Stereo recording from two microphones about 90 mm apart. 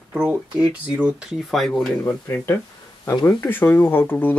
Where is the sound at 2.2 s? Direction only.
30° left (ahead or behind).